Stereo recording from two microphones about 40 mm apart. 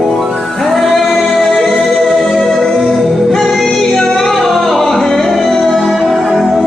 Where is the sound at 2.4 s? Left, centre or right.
Centre.